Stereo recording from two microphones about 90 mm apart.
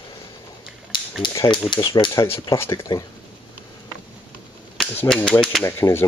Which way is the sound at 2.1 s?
35° left (ahead or behind).